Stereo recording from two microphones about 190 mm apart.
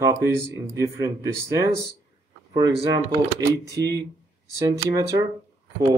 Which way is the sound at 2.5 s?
20° right (ahead or behind).